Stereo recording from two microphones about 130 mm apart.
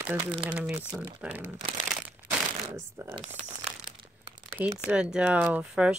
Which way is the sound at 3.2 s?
55° right (ahead or behind).